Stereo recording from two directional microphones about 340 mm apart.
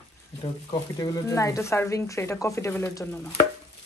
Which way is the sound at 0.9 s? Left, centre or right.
Centre.